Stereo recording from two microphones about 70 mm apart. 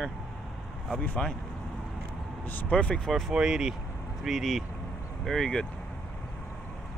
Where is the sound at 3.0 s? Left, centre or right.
Centre.